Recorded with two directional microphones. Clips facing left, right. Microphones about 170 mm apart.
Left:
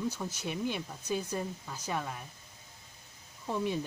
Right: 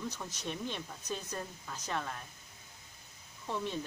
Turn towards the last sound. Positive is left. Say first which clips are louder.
# left 4 dB
turn(degrees=10)  # may be behind; listen again after turning